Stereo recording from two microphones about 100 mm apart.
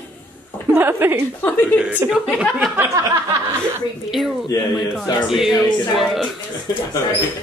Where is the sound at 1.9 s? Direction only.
15° right (ahead or behind).